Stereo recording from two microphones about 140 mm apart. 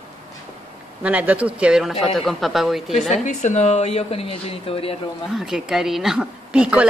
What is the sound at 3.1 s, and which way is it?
Speech, 60° left (ahead or behind).